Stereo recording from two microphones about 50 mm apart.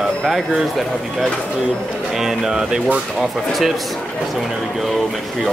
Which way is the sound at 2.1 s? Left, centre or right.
Centre.